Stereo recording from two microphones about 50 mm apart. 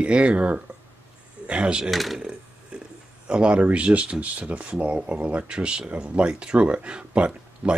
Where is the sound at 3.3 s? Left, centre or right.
Right.